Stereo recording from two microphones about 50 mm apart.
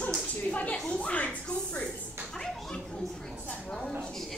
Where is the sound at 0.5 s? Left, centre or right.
Left.